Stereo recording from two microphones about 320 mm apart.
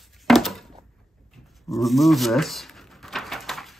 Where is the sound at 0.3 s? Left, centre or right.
Centre.